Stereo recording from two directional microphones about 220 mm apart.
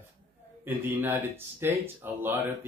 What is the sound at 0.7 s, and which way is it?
Speech, 10° right (ahead or behind).